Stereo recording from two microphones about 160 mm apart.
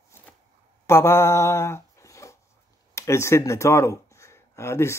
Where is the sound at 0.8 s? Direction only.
15° left (ahead or behind).